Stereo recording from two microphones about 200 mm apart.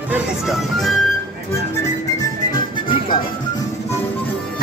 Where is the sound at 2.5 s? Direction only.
25° left (ahead or behind).